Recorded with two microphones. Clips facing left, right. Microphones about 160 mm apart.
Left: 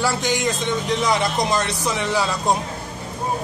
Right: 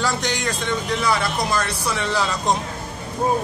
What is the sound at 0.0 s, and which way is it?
Speech, 10° left (ahead or behind).